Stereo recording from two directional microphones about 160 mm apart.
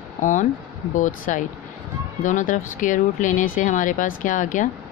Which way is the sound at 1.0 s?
55° left (ahead or behind).